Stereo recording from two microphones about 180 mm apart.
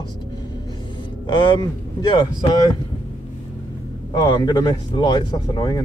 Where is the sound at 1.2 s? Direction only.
25° left (ahead or behind).